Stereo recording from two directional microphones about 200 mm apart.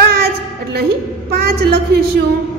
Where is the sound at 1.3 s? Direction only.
50° right (ahead or behind).